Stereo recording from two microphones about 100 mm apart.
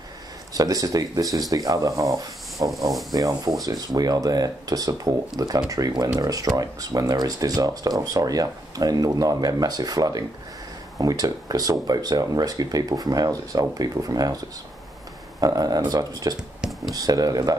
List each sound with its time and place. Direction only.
0.6 s speech: 35° right (ahead or behind)
15.4 s speech: 40° right (ahead or behind)
16.3 s speech: 5° right (ahead or behind)
16.9 s speech: 40° right (ahead or behind)